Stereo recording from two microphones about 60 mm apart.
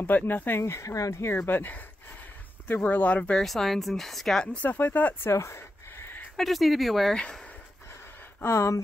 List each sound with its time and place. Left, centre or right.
0.0 s speech: left
0.8 s speech: left
1.1 s speech: left
3.3 s speech: centre
4.4 s speech: centre
4.6 s speech: left
5.3 s a sound: left
6.3 s speech: centre
7.2 s speech: centre
8.4 s speech: left